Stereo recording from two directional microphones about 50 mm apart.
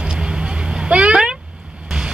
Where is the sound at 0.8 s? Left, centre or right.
Right.